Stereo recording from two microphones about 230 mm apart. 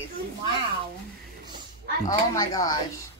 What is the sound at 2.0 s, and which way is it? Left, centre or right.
Speech, centre.